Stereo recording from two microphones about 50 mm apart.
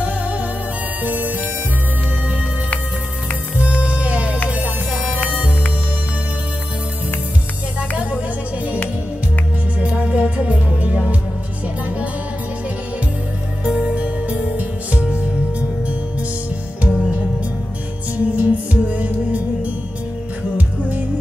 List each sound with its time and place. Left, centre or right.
1.0 s music: right
3.5 s music: right
9.8 s music: right
13.7 s music: centre
18.1 s music: right